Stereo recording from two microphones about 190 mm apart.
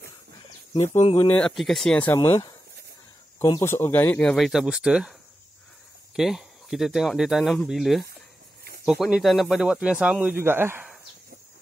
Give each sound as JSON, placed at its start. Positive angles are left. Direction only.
{"t": 0.7, "sound": "speech", "side_deg": 35}
{"t": 1.3, "sound": "speech", "side_deg": 5}
{"t": 2.1, "sound": "speech", "side_deg": 15}
{"t": 6.1, "sound": "speech", "side_deg": 0}